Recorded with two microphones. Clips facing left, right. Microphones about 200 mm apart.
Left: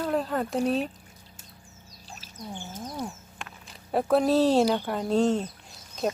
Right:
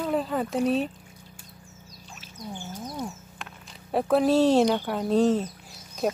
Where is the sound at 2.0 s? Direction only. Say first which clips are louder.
Left 2 dB; 40° left (ahead or behind).